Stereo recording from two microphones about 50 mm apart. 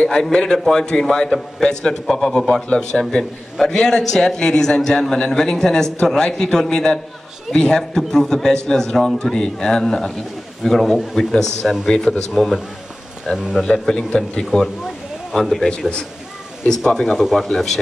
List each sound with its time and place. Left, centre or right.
0.0 s a man's voice: centre
12.4 s speech: centre
13.6 s a man's voice: centre
13.9 s a man's voice: centre
14.4 s a man's voice: centre
17.2 s speech: centre